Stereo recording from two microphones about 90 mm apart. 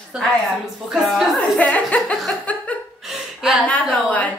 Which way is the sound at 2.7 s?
15° left (ahead or behind).